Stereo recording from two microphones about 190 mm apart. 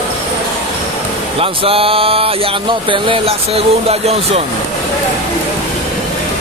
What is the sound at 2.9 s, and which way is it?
Speech, 30° right (ahead or behind).